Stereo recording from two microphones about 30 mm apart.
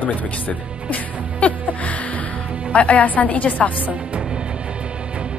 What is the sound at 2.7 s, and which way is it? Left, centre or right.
A woman's voice, left.